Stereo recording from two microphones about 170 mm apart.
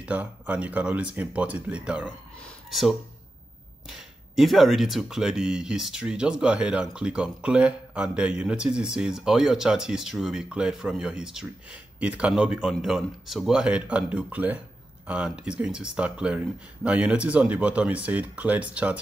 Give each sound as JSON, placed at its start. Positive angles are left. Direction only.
{"t": 0.0, "sound": "speech", "side_deg": -10}